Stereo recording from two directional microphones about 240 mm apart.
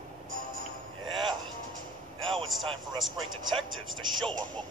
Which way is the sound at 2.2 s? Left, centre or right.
Right.